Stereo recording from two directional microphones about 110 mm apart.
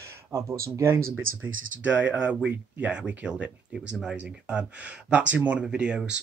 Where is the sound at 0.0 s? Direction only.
25° right (ahead or behind).